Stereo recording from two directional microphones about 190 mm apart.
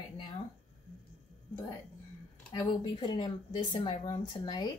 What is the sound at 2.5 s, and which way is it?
Speech, 20° left (ahead or behind).